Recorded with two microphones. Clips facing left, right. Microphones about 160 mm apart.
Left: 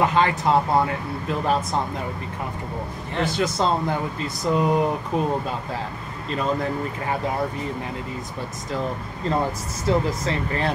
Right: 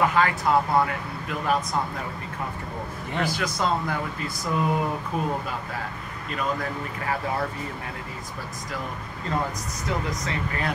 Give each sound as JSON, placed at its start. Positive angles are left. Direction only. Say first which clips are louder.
{"t": 0.0, "sound": "speech", "louder": "left 2 dB", "side_deg": 25}
{"t": 3.2, "sound": "speech", "louder": "left 4 dB", "side_deg": 25}
{"t": 6.3, "sound": "speech", "louder": "left 4 dB", "side_deg": 25}
{"t": 9.8, "sound": "speech", "louder": "left 7 dB", "side_deg": 30}